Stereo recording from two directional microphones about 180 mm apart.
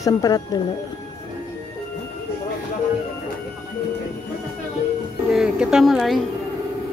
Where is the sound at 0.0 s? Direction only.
20° left (ahead or behind).